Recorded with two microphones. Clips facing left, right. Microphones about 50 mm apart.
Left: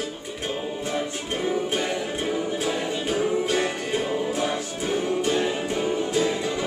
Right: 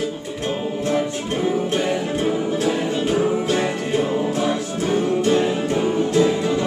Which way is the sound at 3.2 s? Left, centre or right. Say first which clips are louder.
Right 3 dB; centre.